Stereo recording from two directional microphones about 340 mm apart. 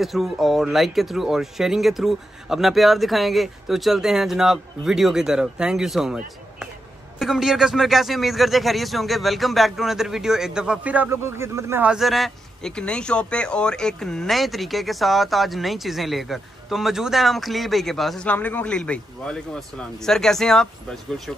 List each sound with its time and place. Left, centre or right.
0.0 s a man's voice: centre